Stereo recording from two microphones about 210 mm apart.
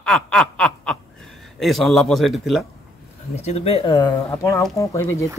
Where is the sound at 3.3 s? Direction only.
30° left (ahead or behind); by 5.3 s 15° left (ahead or behind).